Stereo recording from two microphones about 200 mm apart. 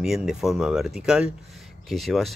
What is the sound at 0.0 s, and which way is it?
Speech, centre (ahead or behind).